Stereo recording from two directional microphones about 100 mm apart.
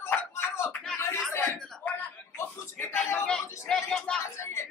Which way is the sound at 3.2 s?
10° left (ahead or behind).